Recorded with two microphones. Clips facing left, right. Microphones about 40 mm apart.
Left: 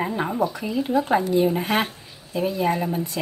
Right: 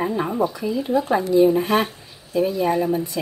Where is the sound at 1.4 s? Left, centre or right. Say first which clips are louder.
Right 4 dB; centre.